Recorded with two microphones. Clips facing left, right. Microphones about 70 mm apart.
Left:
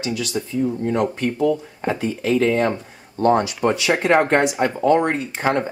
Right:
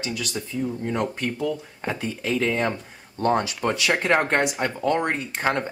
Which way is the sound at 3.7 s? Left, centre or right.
Centre.